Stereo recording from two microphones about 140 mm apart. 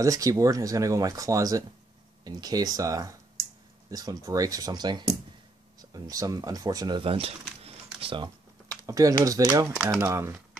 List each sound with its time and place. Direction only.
0.0 s speech: 25° right (ahead or behind)
7.0 s speech: 40° right (ahead or behind)
7.6 s camera: 40° right (ahead or behind)
8.8 s speech: 25° right (ahead or behind)